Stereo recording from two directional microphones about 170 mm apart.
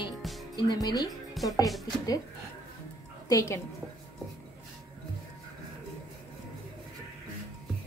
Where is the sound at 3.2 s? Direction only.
20° left (ahead or behind).